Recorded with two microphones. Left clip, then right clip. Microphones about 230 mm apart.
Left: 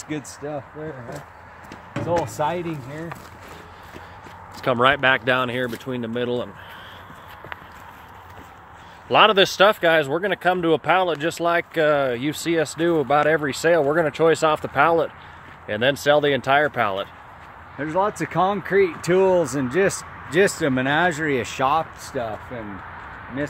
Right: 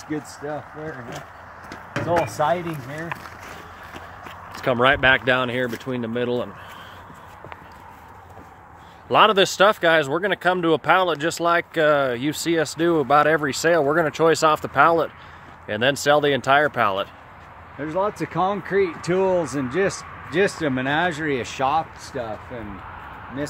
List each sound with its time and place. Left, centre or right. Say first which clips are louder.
2.2 s speech: right 3 dB; left
4.6 s speech: even; centre
9.1 s speech: left 1 dB; centre
17.7 s speech: left 2 dB; left